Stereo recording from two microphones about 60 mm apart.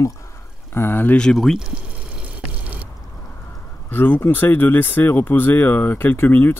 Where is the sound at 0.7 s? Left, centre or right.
Left.